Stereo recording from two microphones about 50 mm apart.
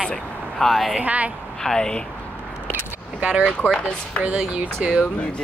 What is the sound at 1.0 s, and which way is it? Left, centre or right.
Speech, right.